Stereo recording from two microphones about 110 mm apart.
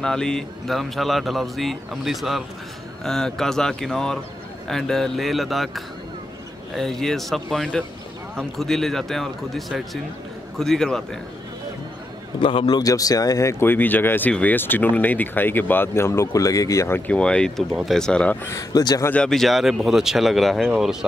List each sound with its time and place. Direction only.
0.0 s speech: 5° left (ahead or behind)
6.7 s speech: 5° left (ahead or behind)
12.4 s speech: 50° left (ahead or behind); by 17.0 s 25° left (ahead or behind)
17.1 s speech: 10° left (ahead or behind)
18.5 s speech: 35° left (ahead or behind)
19.0 s speech: 10° left (ahead or behind)